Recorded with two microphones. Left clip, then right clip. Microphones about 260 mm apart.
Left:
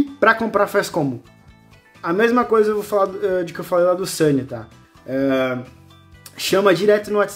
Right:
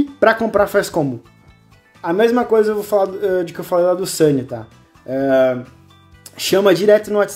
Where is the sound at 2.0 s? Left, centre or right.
Centre.